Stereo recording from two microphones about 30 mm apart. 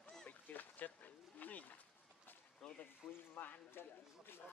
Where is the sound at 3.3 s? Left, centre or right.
Left.